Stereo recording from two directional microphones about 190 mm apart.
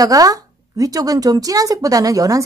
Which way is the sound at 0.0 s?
20° right (ahead or behind).